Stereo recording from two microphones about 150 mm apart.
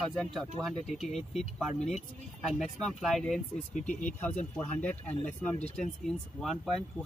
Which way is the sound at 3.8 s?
55° left (ahead or behind).